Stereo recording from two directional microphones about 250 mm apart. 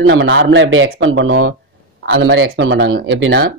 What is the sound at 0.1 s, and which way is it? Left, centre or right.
Speech, right.